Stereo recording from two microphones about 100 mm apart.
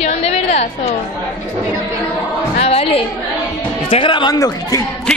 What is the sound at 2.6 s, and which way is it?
Speech, 85° left.